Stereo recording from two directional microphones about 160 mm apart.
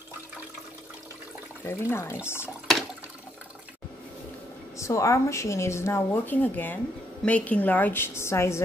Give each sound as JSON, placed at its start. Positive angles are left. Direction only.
{"t": 1.6, "sound": "a woman's voice", "side_deg": 15}
{"t": 4.7, "sound": "a woman's voice", "side_deg": 20}